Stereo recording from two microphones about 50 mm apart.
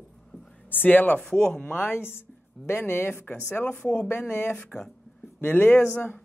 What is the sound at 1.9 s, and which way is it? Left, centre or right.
Speech, left.